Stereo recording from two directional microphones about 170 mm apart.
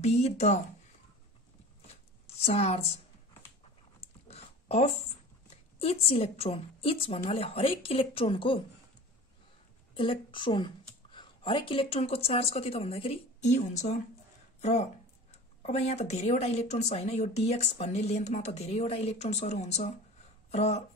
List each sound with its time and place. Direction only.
0.0 s speech: 40° left (ahead or behind)
2.2 s a woman's voice: 35° left (ahead or behind)
4.0 s a sound: 35° left (ahead or behind)
5.8 s speech: 35° left (ahead or behind)
9.9 s a woman's voice: 30° left (ahead or behind)